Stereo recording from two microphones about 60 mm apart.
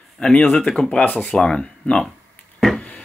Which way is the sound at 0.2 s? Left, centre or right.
Centre.